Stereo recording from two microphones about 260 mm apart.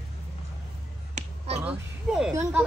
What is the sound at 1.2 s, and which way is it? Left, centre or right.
Finger snapping, right.